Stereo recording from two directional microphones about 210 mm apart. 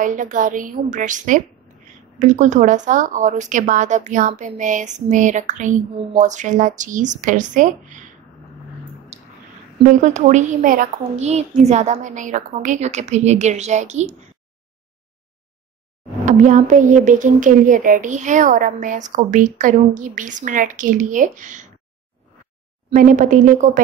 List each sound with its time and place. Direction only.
0.0 s a woman's voice: 40° right (ahead or behind)
9.8 s a woman's voice: 35° right (ahead or behind)
16.3 s a woman's voice: 35° right (ahead or behind)
22.8 s a woman's voice: 40° right (ahead or behind)